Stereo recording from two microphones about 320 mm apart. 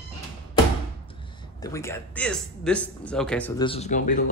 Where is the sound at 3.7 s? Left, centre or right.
Left.